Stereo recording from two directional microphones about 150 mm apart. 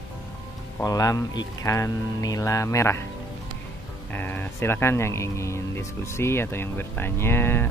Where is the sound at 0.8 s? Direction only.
25° left (ahead or behind).